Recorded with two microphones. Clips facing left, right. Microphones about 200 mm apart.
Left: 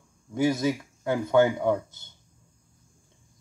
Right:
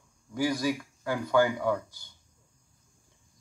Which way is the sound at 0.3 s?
25° left (ahead or behind).